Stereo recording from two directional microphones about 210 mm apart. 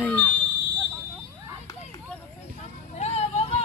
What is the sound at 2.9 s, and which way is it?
Music, 30° left (ahead or behind).